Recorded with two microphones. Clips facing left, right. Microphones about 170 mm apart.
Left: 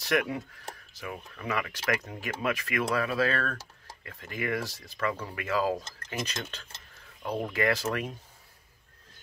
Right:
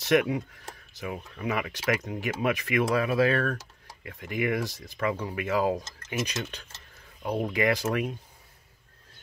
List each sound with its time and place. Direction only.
0.0 s speech: 20° right (ahead or behind)
6.1 s speech: 10° right (ahead or behind)